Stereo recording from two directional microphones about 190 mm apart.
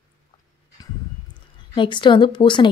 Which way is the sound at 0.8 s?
20° left (ahead or behind).